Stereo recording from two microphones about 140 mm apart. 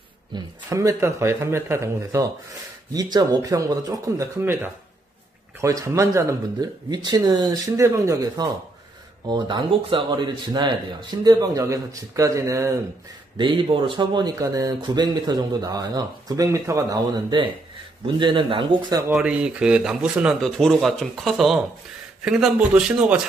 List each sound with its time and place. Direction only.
0.3 s speech: 20° right (ahead or behind)
9.3 s speech: 35° right (ahead or behind)
13.4 s speech: 35° right (ahead or behind)
19.1 s speech: 5° right (ahead or behind)